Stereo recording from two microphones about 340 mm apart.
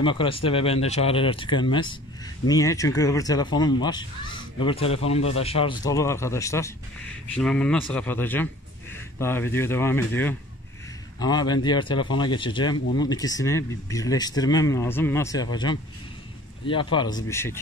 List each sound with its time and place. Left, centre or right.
0.0 s speech: centre